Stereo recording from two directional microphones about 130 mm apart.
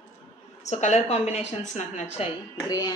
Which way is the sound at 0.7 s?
65° left (ahead or behind).